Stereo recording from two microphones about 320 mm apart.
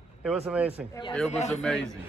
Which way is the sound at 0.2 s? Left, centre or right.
Centre.